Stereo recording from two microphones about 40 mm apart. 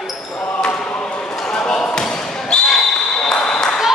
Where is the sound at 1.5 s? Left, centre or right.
Left.